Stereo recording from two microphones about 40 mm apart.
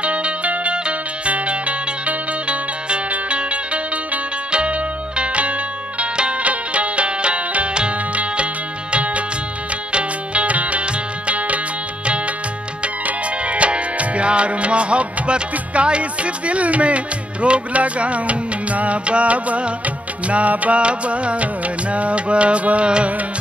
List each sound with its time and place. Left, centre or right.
0.0 s music: right
12.8 s music: right